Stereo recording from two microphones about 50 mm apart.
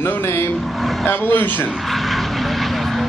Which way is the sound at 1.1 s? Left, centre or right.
Left.